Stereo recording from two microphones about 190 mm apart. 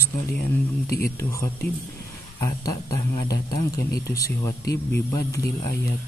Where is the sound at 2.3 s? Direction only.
15° left (ahead or behind).